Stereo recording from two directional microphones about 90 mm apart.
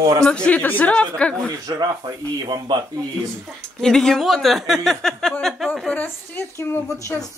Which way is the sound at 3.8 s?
5° left (ahead or behind).